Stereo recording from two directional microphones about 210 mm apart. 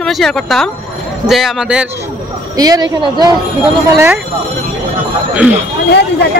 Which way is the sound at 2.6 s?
15° right (ahead or behind).